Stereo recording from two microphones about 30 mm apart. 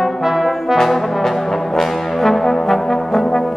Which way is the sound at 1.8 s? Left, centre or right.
Centre.